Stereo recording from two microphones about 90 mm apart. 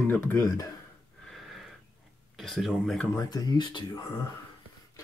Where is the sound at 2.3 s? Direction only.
Centre (ahead or behind).